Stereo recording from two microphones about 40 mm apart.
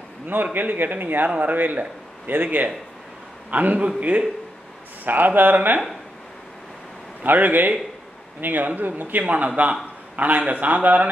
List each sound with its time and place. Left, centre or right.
0.3 s a man's voice: right
3.4 s speech: right
5.0 s a man's voice: right
7.2 s a man's voice: right
9.2 s speech: right